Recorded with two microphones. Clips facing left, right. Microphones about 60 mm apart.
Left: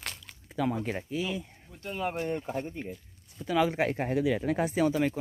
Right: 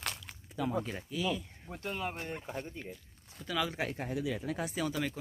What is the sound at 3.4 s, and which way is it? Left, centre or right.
Speech, left.